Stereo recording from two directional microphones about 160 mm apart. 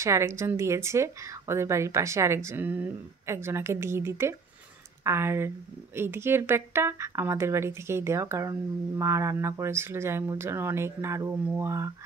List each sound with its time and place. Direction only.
0.0 s speech: 15° right (ahead or behind)